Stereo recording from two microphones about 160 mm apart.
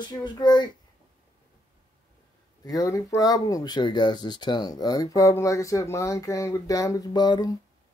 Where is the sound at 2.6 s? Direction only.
20° left (ahead or behind).